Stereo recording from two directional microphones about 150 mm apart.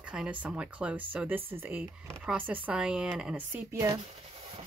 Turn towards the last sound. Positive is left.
turn(degrees=-30)  # may be behind; listen again after turning